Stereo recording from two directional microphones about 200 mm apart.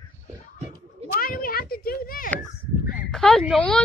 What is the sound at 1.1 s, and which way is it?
Speech, 45° left (ahead or behind).